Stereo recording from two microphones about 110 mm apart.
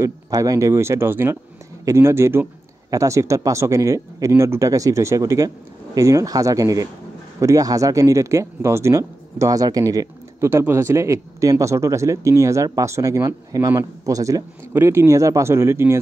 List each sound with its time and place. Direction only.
0.0 s speech: 30° right (ahead or behind)